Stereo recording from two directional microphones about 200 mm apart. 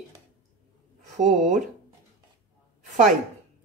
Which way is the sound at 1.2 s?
35° right (ahead or behind).